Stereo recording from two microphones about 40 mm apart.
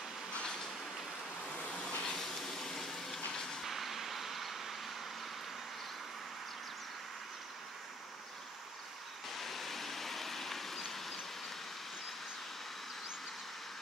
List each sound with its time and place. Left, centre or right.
1.4 s vehicle: left
2.0 s a sound: centre
3.6 s vehicle: centre
9.3 s vehicle: centre